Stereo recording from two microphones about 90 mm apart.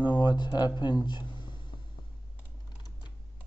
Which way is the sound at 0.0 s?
60° left (ahead or behind).